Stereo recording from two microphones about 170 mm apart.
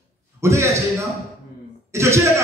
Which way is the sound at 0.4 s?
15° right (ahead or behind).